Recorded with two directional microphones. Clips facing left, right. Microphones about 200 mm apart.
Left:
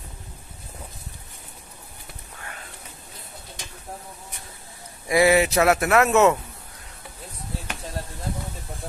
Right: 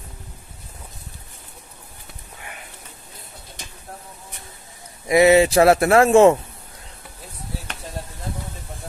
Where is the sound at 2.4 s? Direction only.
15° right (ahead or behind).